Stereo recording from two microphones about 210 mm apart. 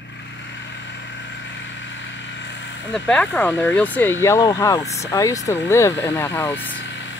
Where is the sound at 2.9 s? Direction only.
5° left (ahead or behind).